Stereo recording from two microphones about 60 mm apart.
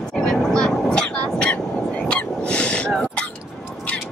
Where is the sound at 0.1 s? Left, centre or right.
Centre.